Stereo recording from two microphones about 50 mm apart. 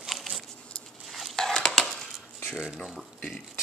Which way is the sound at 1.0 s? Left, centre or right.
Centre.